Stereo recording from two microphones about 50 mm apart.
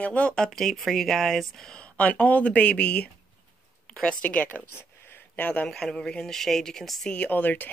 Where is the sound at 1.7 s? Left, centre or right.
Left.